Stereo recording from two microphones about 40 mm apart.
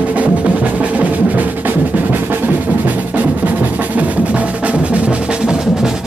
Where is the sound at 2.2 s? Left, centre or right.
Right.